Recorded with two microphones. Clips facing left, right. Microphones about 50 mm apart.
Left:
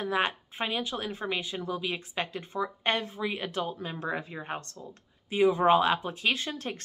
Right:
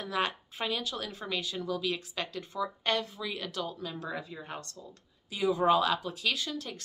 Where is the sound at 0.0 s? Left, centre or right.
Left.